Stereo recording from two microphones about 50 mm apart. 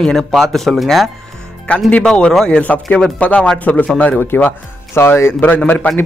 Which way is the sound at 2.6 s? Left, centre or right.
Left.